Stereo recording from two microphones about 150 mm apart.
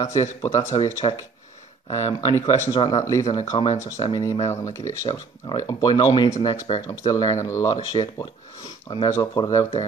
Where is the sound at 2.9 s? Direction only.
20° left (ahead or behind).